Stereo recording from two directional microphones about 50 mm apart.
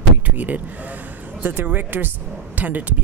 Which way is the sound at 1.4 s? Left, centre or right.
Right.